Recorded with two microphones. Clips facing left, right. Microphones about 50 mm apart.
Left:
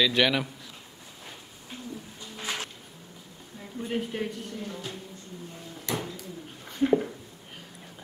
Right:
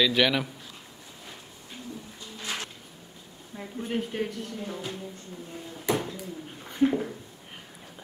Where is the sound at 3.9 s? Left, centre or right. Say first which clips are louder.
Right 1 dB; centre.